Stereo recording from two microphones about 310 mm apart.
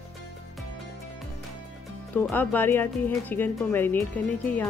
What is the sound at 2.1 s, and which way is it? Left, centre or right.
Speech, centre.